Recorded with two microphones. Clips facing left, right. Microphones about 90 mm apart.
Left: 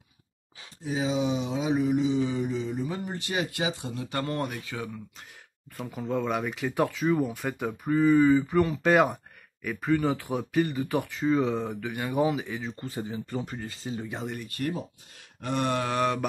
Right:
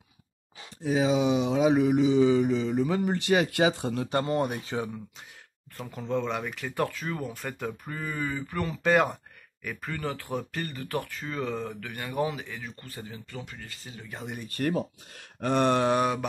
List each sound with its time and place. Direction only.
0.8 s mantra: 65° right (ahead or behind)
4.1 s speech: 20° right (ahead or behind)
5.8 s speech: 5° left (ahead or behind)
6.5 s speech: 15° left (ahead or behind)
9.8 s speech: 15° left (ahead or behind)
12.6 s speech: 20° left (ahead or behind)
14.6 s speech: 45° right (ahead or behind)
15.4 s groan: 40° right (ahead or behind)